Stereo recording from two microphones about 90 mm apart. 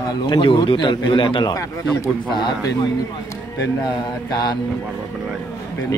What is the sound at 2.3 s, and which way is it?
Speech, 55° left (ahead or behind).